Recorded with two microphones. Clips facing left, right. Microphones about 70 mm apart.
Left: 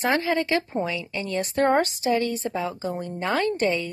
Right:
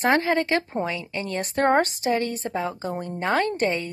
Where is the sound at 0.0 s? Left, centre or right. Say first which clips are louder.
Right 2 dB; right.